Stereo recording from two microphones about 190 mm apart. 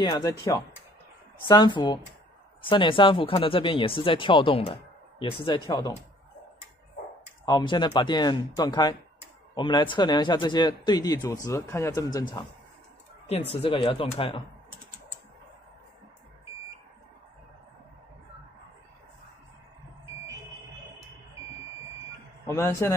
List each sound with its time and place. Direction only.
0.0 s speech: 20° left (ahead or behind)
7.4 s speech: 25° left (ahead or behind)
13.5 s speech: 30° left (ahead or behind)
22.5 s a man's voice: 15° left (ahead or behind)